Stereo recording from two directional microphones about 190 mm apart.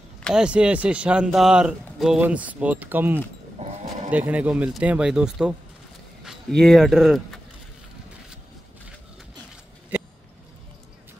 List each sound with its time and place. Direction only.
0.2 s speech: 5° right (ahead or behind)
3.5 s livestock: 35° right (ahead or behind)
4.1 s speech: 10° right (ahead or behind)